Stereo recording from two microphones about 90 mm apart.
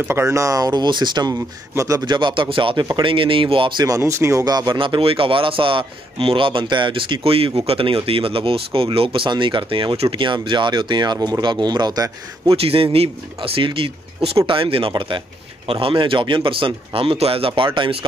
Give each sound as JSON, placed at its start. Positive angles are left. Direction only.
{"t": 0.1, "sound": "speech", "side_deg": -30}
{"t": 1.8, "sound": "speech", "side_deg": -35}
{"t": 2.0, "sound": "a man's voice", "side_deg": -60}
{"t": 3.8, "sound": "speech", "side_deg": -35}
{"t": 4.5, "sound": "speech", "side_deg": -50}
{"t": 4.7, "sound": "a man's voice", "side_deg": -70}
{"t": 12.5, "sound": "speech", "side_deg": -90}